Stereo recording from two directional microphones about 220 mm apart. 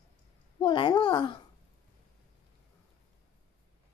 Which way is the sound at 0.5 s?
20° left (ahead or behind).